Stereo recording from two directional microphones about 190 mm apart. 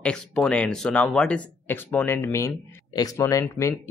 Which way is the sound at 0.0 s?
5° left (ahead or behind).